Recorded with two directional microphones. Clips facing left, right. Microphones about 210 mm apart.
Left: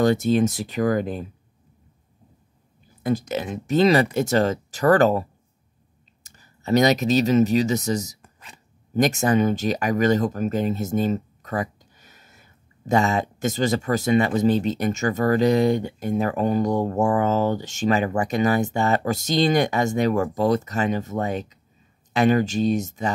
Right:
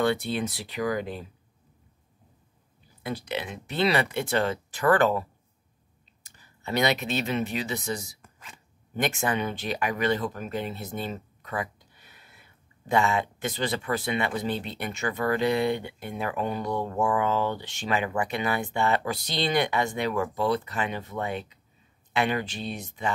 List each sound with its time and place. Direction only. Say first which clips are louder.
0.0 s speech: left 7 dB; 40° left (ahead or behind)
3.0 s speech: left 8 dB; 45° left (ahead or behind)
6.2 s speech: left 8 dB; 40° left (ahead or behind)